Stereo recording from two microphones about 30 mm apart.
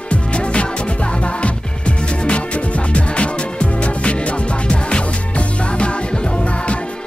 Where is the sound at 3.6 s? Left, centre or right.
Left.